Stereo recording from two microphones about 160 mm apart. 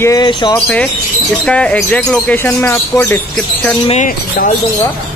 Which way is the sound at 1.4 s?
5° left (ahead or behind).